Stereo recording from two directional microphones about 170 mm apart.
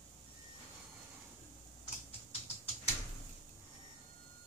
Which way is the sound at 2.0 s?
35° left (ahead or behind).